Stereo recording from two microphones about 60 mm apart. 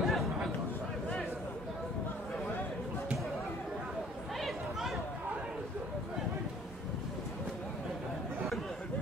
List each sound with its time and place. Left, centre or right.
0.0 s chatter: centre
4.4 s chatter: centre